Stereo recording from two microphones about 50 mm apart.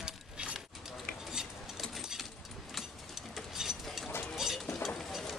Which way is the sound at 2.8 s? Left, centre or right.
Centre.